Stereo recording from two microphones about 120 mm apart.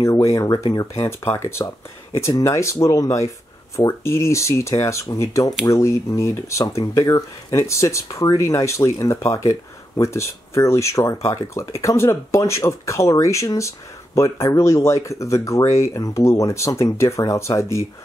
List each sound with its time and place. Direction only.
0.0 s speech: 25° left (ahead or behind)
0.9 s speech: 20° left (ahead or behind)